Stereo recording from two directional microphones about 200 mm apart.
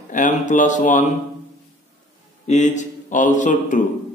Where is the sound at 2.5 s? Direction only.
35° left (ahead or behind).